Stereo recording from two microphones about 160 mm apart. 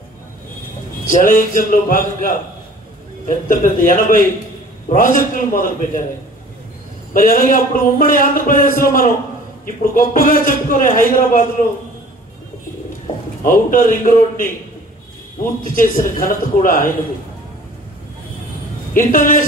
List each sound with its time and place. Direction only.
1.1 s a man's voice: 60° left (ahead or behind)
7.2 s a man's voice: 60° left (ahead or behind)
13.4 s a man's voice: 60° left (ahead or behind)
18.9 s a man's voice: 60° left (ahead or behind)